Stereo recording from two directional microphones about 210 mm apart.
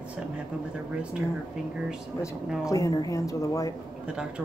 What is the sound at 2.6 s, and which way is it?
Speech, 15° left (ahead or behind).